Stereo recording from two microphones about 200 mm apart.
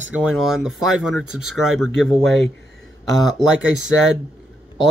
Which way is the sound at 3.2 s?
Centre (ahead or behind).